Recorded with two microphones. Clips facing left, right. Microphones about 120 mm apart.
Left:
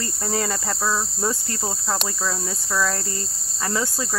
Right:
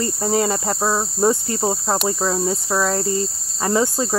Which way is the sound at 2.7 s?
25° right (ahead or behind).